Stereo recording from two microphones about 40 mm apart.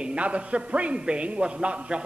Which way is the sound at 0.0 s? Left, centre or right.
Right.